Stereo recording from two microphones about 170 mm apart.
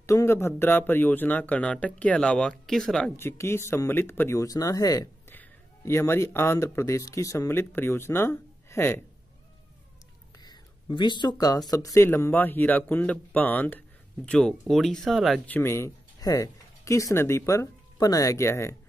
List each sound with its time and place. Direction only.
0.0 s speech: 15° left (ahead or behind)
3.2 s speech: 15° left (ahead or behind)
10.4 s speech: 25° left (ahead or behind)